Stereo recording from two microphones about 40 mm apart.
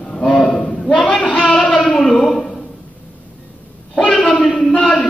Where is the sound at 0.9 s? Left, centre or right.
Left.